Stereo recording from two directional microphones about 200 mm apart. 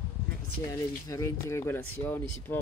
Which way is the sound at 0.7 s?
15° left (ahead or behind).